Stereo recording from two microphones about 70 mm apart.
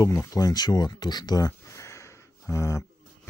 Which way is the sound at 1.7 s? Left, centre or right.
Left.